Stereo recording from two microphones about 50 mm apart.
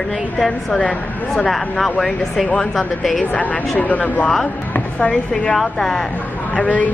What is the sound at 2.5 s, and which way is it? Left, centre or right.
Speech, centre.